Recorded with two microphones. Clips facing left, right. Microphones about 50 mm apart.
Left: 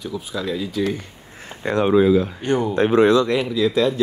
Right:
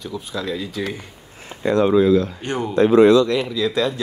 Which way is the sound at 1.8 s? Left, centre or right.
Left.